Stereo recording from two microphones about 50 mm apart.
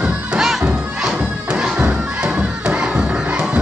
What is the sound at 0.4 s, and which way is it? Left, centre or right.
Music, centre.